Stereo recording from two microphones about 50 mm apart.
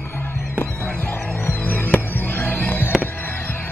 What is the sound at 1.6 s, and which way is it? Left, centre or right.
Music, left.